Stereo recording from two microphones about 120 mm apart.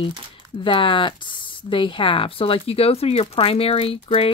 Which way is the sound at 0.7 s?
45° left (ahead or behind).